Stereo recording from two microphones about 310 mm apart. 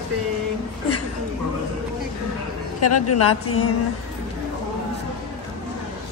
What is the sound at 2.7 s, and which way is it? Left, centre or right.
Speech, left.